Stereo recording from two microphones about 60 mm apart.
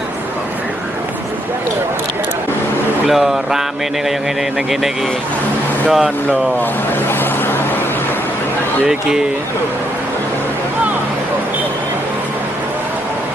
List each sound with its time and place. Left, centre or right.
3.1 s speech: centre
5.9 s speech: centre